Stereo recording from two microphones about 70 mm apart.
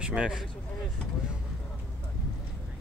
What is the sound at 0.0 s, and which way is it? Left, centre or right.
Speech, centre.